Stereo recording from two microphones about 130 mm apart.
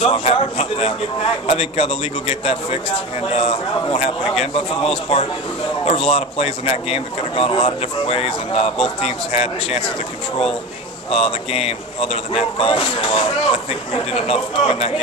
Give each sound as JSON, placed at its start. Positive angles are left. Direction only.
{"t": 0.0, "sound": "a man's voice", "side_deg": 45}
{"t": 11.1, "sound": "a man's voice", "side_deg": 50}